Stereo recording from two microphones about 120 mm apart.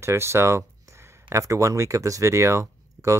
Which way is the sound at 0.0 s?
20° right (ahead or behind).